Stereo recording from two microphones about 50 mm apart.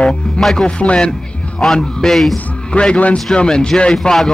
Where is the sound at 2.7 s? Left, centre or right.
Left.